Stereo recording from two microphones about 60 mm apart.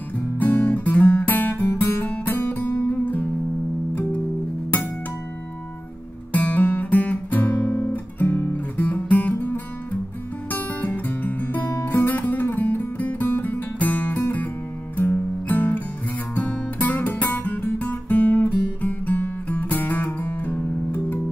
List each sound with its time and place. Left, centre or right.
0.4 s music: left
6.3 s guitar: left
10.5 s guitar: left
15.0 s music: left
16.3 s guitar: left